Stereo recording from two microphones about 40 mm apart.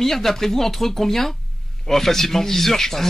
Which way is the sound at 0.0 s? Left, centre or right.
Centre.